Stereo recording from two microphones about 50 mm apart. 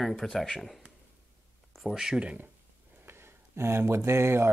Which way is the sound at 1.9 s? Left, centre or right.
Centre.